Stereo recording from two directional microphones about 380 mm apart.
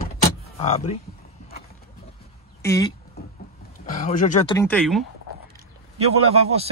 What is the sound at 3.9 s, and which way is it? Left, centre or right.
Speech, centre.